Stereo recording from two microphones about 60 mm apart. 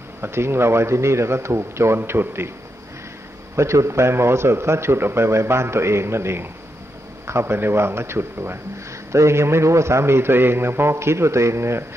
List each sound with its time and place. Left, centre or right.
0.2 s a man's voice: right
3.5 s a man's voice: right
9.1 s a man's voice: right